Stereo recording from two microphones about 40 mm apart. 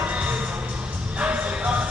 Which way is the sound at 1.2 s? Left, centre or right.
Right.